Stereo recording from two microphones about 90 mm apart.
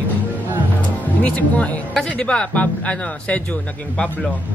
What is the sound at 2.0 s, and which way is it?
Speech, 10° left (ahead or behind).